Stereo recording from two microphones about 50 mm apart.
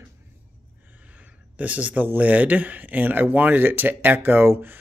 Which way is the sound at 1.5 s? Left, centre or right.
Right.